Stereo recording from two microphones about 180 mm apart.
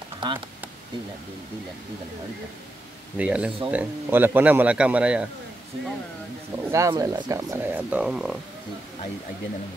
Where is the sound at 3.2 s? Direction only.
5° right (ahead or behind).